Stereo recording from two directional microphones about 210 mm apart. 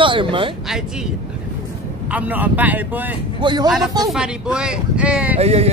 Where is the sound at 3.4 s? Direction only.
20° right (ahead or behind).